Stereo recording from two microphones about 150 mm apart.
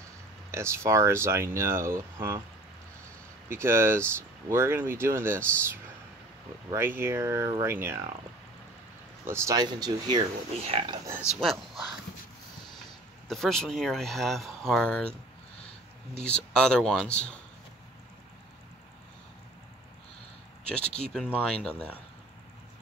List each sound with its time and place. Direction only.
0.5 s speech: 20° right (ahead or behind)
3.4 s speech: 15° right (ahead or behind)
6.7 s speech: 15° right (ahead or behind)
9.2 s speech: 15° right (ahead or behind)
10.7 s speech: 40° right (ahead or behind)
11.1 s speech: 15° right (ahead or behind)
11.4 s speech: centre (ahead or behind)
13.3 s speech: centre (ahead or behind)
16.2 s speech: 5° left (ahead or behind)
20.6 s speech: 5° left (ahead or behind)